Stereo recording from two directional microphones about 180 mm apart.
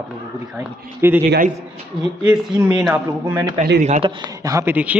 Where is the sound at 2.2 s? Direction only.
10° right (ahead or behind).